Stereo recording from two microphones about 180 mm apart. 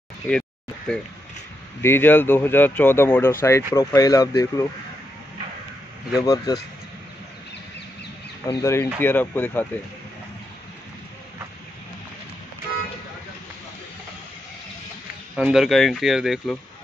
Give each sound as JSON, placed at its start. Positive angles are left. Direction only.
{"t": 0.3, "sound": "a sound", "side_deg": 5}
{"t": 1.8, "sound": "speech", "side_deg": 10}
{"t": 6.2, "sound": "speech", "side_deg": 20}
{"t": 8.5, "sound": "speech", "side_deg": 15}
{"t": 15.3, "sound": "speech", "side_deg": 0}